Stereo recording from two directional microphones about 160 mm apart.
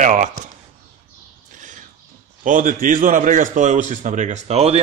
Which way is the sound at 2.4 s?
55° right (ahead or behind).